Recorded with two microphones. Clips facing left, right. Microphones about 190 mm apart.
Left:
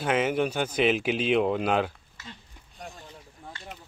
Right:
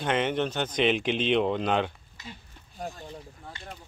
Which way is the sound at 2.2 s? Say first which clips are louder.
Right 1 dB; 15° right (ahead or behind).